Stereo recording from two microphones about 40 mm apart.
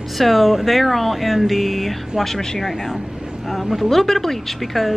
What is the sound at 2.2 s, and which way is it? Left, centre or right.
A woman's voice, centre.